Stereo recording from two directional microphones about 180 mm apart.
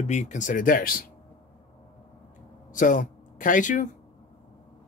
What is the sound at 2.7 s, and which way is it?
Speech, 45° left (ahead or behind).